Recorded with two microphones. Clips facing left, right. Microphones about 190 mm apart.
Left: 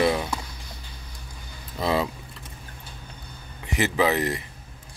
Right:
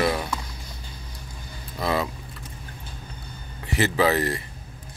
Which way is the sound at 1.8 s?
25° left (ahead or behind).